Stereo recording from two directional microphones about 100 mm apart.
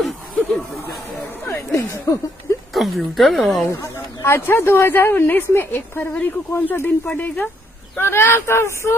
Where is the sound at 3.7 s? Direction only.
30° left (ahead or behind).